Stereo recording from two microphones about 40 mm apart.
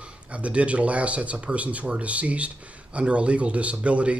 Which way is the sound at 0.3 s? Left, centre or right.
Right.